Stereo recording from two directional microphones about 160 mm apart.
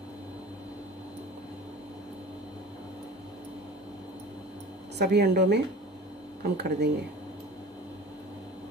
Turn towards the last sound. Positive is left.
turn(degrees=-90)